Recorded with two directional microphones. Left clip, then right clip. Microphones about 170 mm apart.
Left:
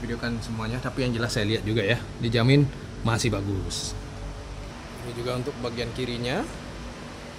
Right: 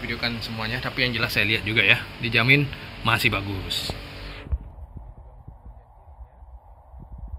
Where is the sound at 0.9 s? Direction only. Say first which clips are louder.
Right 5 dB; 5° left (ahead or behind).